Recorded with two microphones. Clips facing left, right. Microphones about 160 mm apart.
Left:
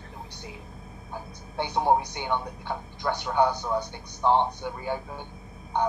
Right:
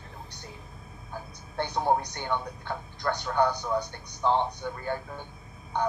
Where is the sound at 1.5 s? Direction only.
15° left (ahead or behind).